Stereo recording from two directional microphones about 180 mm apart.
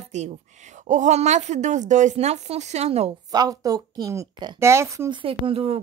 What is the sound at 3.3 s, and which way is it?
Speech, 20° right (ahead or behind).